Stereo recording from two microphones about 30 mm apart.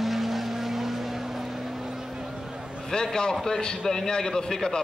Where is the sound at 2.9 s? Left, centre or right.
Left.